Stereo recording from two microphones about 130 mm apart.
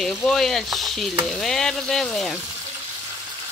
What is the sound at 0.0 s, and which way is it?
Speech, 5° left (ahead or behind).